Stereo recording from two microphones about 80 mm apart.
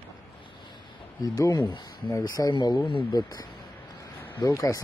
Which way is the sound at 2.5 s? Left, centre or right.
Left.